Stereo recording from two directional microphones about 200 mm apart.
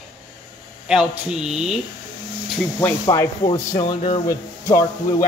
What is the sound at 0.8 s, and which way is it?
Speech, 5° right (ahead or behind).